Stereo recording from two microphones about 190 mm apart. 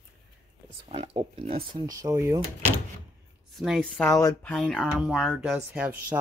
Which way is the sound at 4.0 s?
15° left (ahead or behind).